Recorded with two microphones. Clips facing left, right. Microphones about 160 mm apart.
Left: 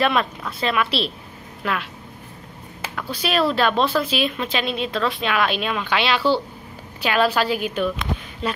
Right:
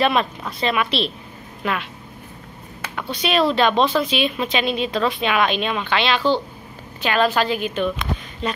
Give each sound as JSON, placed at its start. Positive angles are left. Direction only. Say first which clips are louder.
{"t": 0.0, "sound": "speech", "louder": "right 1 dB", "side_deg": 0}
{"t": 3.0, "sound": "a woman's voice", "louder": "right 2 dB", "side_deg": 5}